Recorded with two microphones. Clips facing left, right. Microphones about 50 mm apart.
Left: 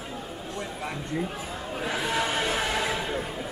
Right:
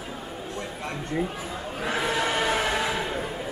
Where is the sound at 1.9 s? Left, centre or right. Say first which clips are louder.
Right 3 dB; right.